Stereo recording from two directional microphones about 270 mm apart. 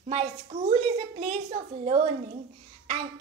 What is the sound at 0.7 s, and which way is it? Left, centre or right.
A woman's voice, right.